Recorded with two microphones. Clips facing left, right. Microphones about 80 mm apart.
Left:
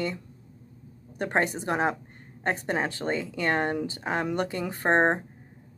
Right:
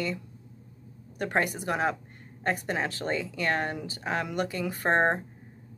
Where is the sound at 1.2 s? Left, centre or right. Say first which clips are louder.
Left 2 dB; left.